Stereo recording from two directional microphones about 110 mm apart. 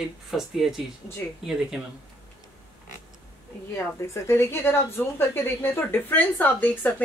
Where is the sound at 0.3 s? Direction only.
5° right (ahead or behind).